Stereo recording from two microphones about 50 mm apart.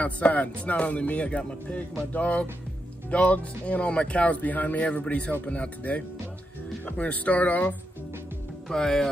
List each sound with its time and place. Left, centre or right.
0.0 s speech: left
8.6 s music: centre